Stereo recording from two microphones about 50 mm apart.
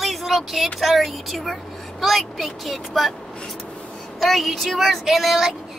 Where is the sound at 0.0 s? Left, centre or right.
Centre.